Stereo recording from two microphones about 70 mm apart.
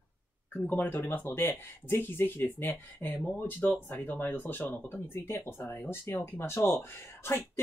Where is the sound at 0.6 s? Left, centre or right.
Left.